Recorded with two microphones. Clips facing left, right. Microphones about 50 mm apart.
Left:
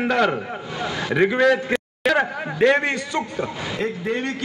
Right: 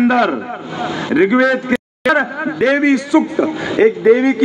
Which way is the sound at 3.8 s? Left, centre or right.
Right.